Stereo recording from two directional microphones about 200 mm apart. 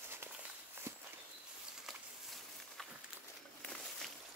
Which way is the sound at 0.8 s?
10° right (ahead or behind).